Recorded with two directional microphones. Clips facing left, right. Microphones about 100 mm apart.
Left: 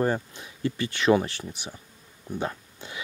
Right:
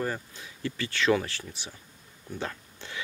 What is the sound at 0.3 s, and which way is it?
Speech, 20° left (ahead or behind).